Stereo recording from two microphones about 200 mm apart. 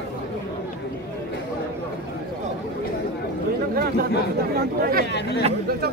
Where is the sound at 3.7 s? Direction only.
50° right (ahead or behind).